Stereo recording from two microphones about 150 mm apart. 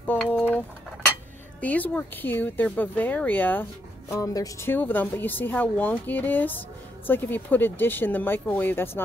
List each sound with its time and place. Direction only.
0.1 s bird: 10° left (ahead or behind)
1.6 s speech: 10° left (ahead or behind)
4.1 s speech: 25° left (ahead or behind)